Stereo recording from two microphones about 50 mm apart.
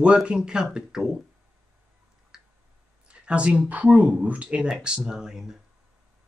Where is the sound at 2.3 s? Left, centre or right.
Centre.